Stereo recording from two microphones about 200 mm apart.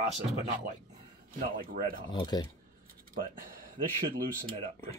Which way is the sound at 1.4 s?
45° right (ahead or behind).